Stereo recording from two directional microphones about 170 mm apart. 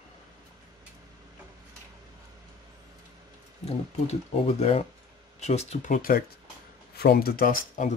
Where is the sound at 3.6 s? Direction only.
40° left (ahead or behind).